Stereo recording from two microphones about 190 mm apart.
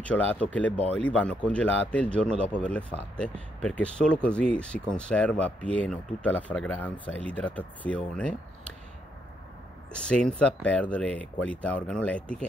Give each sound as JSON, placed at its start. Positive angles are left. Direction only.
{"t": 0.0, "sound": "speech", "side_deg": 10}
{"t": 10.0, "sound": "speech", "side_deg": 5}